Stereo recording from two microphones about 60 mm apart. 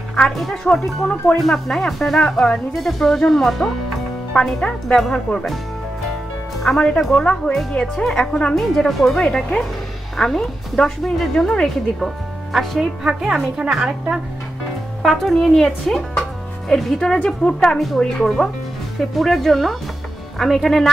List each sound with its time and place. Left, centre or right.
0.4 s a woman's voice: centre
2.7 s speech: centre
4.6 s a woman's voice: centre
6.6 s a woman's voice: centre
8.5 s a woman's voice: centre
12.5 s a woman's voice: centre
15.0 s a woman's voice: centre
18.9 s speech: centre